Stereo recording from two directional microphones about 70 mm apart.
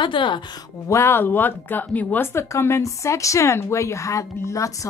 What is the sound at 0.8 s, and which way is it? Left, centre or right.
Speech, left.